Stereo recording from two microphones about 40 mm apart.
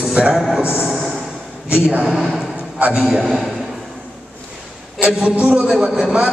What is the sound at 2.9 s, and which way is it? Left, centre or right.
Speech, right.